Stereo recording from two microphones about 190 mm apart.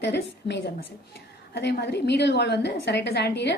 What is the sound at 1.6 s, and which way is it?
A woman's voice, 60° left (ahead or behind).